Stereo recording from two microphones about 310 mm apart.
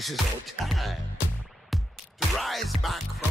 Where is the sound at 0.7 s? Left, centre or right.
Centre.